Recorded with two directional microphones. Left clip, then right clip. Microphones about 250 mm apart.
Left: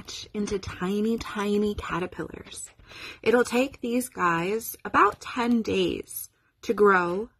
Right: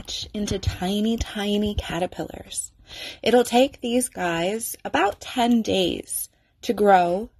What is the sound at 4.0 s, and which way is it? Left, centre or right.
A woman's voice, centre.